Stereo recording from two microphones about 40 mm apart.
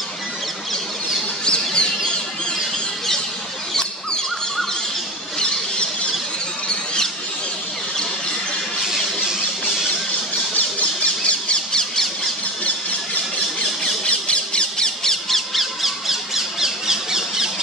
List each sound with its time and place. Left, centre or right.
1.4 s bird: left
10.5 s squawk: left
14.0 s squawk: left
15.0 s squawk: centre